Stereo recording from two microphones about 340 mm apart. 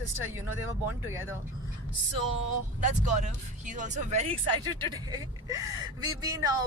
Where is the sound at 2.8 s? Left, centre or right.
Right.